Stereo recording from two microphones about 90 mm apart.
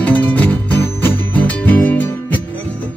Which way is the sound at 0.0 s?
15° left (ahead or behind).